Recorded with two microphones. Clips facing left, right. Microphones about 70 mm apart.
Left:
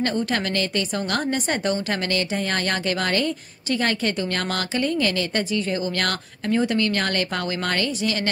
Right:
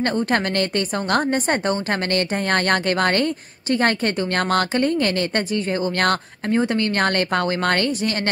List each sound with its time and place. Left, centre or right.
0.0 s speech: right